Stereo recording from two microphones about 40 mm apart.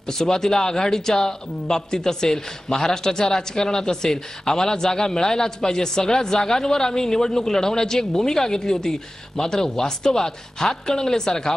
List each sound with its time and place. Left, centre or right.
0.0 s a man's voice: centre